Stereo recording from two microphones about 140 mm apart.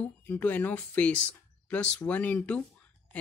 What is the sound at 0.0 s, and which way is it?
Speech, 10° left (ahead or behind).